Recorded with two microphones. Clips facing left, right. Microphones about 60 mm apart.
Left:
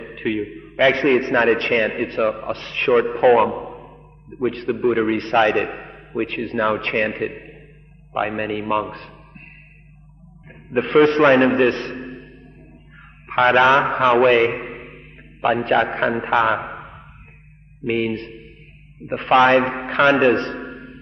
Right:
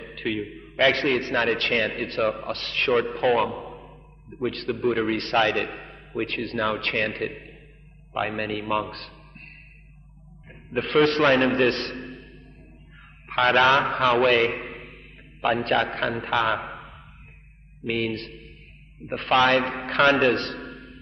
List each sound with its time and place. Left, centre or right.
0.0 s a man's voice: centre
4.8 s a man's voice: centre
5.1 s a man's voice: centre
11.0 s a man's voice: left